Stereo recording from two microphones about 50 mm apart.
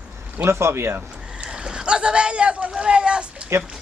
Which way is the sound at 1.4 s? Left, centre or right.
Centre.